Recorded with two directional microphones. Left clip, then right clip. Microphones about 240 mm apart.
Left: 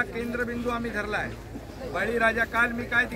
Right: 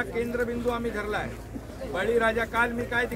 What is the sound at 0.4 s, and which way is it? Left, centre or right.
Speech, centre.